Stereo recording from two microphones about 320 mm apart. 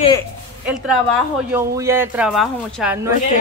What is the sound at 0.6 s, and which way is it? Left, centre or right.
A woman's voice, centre.